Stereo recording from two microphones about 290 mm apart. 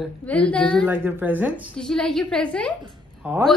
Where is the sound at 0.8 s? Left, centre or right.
Centre.